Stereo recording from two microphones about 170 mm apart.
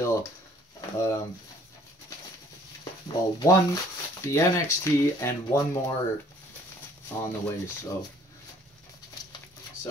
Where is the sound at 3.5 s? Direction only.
20° left (ahead or behind).